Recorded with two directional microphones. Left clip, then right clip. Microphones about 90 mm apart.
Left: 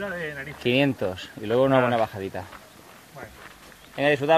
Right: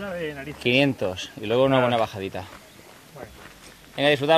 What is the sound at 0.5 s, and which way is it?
Speech, 45° left (ahead or behind).